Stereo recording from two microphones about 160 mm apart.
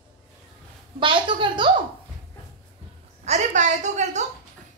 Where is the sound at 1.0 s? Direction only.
30° right (ahead or behind).